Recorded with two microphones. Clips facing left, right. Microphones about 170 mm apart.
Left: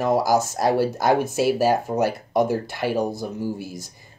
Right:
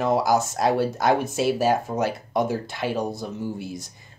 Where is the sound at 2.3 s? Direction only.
55° left (ahead or behind).